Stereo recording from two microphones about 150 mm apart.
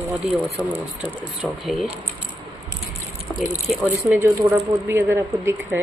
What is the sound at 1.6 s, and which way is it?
Speech, centre (ahead or behind).